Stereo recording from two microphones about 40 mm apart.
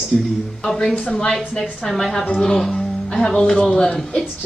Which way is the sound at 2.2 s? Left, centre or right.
Left.